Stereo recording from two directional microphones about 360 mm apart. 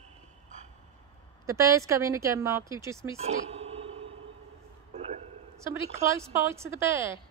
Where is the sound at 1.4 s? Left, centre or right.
Centre.